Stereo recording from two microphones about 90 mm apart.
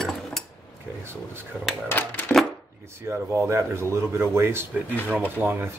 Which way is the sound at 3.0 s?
30° right (ahead or behind).